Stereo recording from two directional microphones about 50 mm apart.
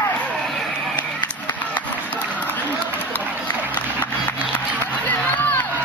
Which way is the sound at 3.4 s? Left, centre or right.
Left.